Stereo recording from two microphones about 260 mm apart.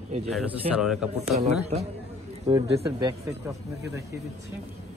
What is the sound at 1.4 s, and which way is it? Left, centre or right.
A man's voice, right.